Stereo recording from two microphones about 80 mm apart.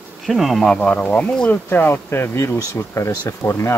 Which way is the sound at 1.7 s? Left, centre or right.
Left.